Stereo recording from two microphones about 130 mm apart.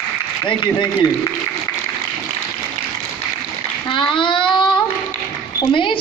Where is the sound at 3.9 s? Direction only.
40° left (ahead or behind).